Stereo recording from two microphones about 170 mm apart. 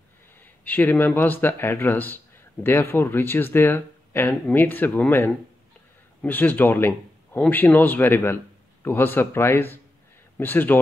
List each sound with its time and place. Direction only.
0.4 s speech: 10° left (ahead or behind)